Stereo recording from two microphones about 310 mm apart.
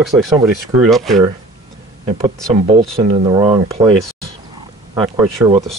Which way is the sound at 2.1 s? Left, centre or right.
Centre.